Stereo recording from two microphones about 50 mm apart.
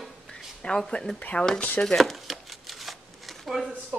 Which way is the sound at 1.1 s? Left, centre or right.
Left.